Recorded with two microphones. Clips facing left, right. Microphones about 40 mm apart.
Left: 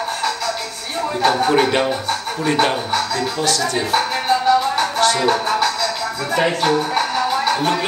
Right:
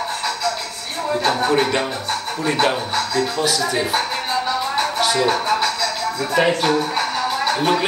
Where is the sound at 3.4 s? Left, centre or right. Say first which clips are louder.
Even; centre.